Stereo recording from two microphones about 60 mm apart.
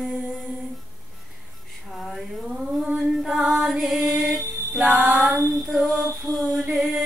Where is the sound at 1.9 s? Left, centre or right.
Centre.